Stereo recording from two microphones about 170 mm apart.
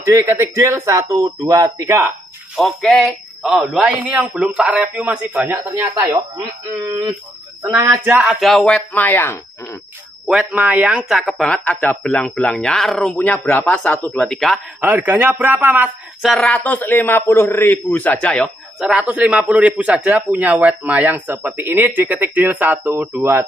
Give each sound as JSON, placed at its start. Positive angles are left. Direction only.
{"t": 0.0, "sound": "a man's voice", "side_deg": -15}
{"t": 2.5, "sound": "speech", "side_deg": 0}
{"t": 6.3, "sound": "a man's voice", "side_deg": -25}
{"t": 8.2, "sound": "a man's voice", "side_deg": 0}
{"t": 10.2, "sound": "speech", "side_deg": -5}
{"t": 14.8, "sound": "a man's voice", "side_deg": -10}
{"t": 18.8, "sound": "a man's voice", "side_deg": -5}